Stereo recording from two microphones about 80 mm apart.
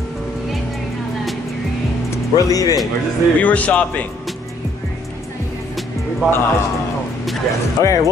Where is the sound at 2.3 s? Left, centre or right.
Left.